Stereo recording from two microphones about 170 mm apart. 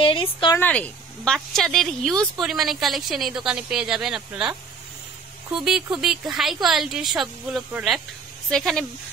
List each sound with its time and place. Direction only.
0.0 s a woman's voice: 30° left (ahead or behind)
0.6 s speech: 10° left (ahead or behind)
5.9 s speech: centre (ahead or behind)